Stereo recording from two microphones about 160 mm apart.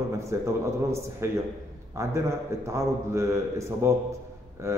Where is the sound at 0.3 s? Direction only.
15° right (ahead or behind).